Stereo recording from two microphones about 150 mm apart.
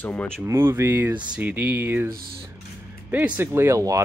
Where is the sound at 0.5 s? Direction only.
15° right (ahead or behind).